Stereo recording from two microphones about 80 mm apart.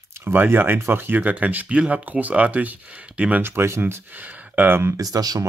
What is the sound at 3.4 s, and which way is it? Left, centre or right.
Speech, right.